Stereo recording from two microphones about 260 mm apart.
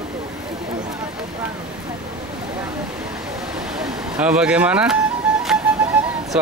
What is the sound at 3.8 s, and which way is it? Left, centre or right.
Music, centre.